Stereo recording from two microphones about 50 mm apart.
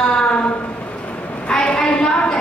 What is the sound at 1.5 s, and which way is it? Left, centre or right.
Speech, centre.